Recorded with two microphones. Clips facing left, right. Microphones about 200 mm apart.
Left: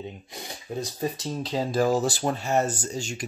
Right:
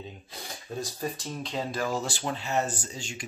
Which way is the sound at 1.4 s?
35° left (ahead or behind).